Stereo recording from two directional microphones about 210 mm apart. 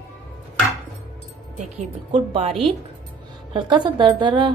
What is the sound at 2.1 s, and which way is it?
Speech, 25° right (ahead or behind).